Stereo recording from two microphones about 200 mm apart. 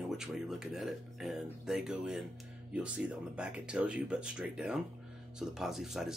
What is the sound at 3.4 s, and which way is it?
Speech, 5° right (ahead or behind).